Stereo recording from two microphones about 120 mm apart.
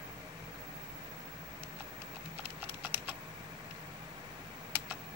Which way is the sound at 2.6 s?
15° right (ahead or behind).